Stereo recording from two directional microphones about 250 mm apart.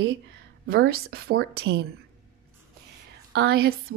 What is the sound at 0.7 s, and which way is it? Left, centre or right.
Speech, right.